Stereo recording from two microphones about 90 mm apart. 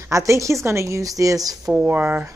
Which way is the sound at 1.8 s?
20° right (ahead or behind).